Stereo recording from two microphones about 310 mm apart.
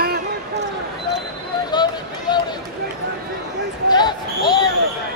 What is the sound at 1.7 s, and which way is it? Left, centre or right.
Run, centre.